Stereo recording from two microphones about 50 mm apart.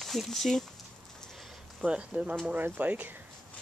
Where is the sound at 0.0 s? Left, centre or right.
Centre.